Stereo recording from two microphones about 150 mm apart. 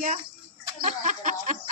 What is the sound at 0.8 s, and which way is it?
Speech, 55° right (ahead or behind).